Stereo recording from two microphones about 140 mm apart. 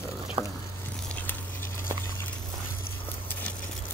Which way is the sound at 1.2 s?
15° left (ahead or behind).